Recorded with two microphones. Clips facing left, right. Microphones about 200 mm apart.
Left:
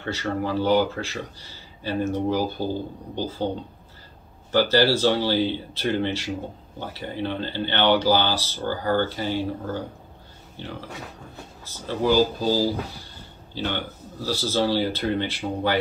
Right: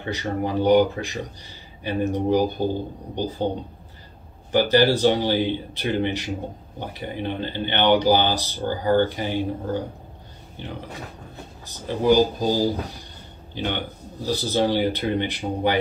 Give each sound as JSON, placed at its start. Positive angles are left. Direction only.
{"t": 0.0, "sound": "speech", "side_deg": -15}
{"t": 4.5, "sound": "speech", "side_deg": -15}
{"t": 10.6, "sound": "speech", "side_deg": -20}